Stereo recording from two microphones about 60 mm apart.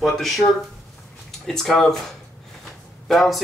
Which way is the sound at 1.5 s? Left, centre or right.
Centre.